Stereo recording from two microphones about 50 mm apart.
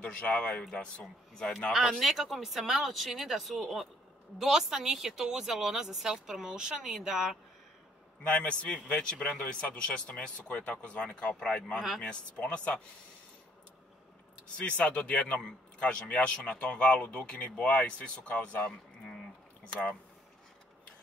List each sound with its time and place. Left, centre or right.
0.0 s speech: left
1.7 s speech: centre
8.2 s speech: left
12.0 s speech: left
14.6 s speech: left